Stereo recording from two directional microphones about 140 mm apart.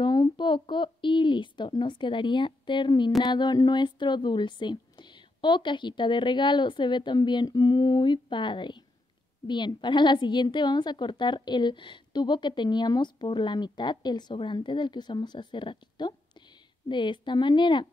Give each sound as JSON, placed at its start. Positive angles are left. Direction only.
{"t": 0.0, "sound": "a woman's voice", "side_deg": 30}